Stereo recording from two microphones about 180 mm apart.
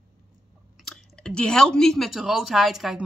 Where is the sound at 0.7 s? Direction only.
5° left (ahead or behind).